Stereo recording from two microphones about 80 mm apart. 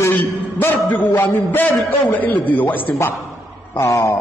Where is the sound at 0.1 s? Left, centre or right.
Left.